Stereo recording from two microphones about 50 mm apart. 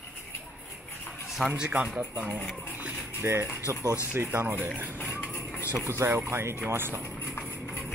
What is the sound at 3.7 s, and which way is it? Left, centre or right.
Speech, right.